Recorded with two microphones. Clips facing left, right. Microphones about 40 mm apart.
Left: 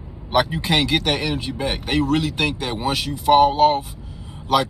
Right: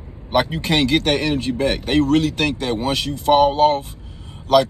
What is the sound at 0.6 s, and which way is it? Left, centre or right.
Speech, left.